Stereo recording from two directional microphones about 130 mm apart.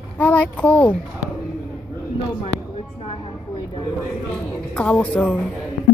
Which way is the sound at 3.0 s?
45° left (ahead or behind).